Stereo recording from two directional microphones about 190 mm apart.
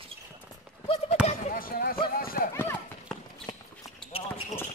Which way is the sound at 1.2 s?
45° left (ahead or behind).